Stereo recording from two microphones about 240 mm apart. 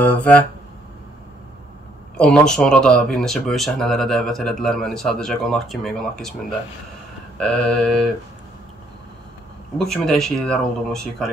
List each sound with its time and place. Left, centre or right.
0.0 s speech: centre
2.1 s speech: centre
7.3 s speech: centre
9.8 s speech: centre